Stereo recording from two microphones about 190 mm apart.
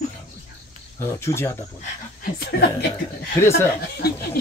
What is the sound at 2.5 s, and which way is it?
Speech, 55° left (ahead or behind).